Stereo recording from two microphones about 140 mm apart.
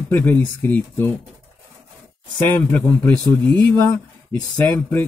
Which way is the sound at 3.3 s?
10° left (ahead or behind).